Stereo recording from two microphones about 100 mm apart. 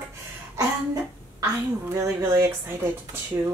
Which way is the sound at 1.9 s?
30° right (ahead or behind).